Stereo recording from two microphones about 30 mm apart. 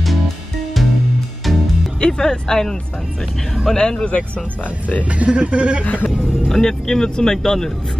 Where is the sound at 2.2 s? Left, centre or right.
Left.